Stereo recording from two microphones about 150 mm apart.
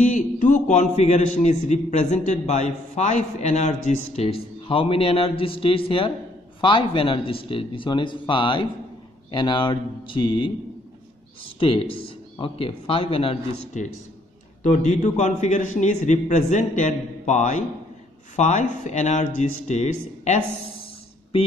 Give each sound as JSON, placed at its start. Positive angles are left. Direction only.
{"t": 0.1, "sound": "a man's voice", "side_deg": 55}
{"t": 4.2, "sound": "speech", "side_deg": 40}
{"t": 11.6, "sound": "speech", "side_deg": 40}
{"t": 14.6, "sound": "a man's voice", "side_deg": 55}
{"t": 20.8, "sound": "music", "side_deg": 40}